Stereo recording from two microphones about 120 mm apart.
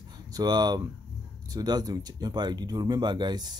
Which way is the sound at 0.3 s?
35° right (ahead or behind).